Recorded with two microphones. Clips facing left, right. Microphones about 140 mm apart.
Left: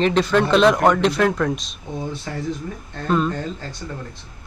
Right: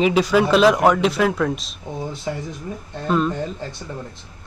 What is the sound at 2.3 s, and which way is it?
Speech, 15° right (ahead or behind).